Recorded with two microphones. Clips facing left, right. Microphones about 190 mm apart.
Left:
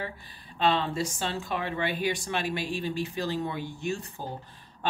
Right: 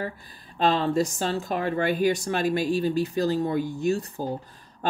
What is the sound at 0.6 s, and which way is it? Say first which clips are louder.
Speech: right 4 dB; 40° right (ahead or behind).